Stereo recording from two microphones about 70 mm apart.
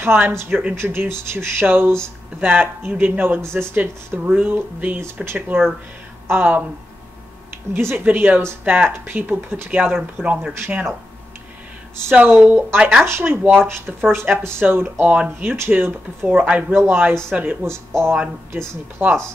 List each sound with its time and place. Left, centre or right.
0.0 s speech: right
0.5 s speech: centre
0.8 s speech: right
7.7 s speech: right
12.2 s speech: right
13.0 s speech: right
15.5 s speech: right
16.3 s speech: centre
16.7 s speech: right